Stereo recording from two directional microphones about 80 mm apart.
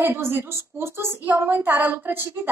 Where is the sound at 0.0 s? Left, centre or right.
Right.